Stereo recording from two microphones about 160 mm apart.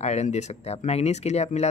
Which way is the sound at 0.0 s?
45° left (ahead or behind).